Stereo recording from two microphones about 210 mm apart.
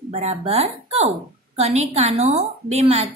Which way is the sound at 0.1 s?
30° right (ahead or behind).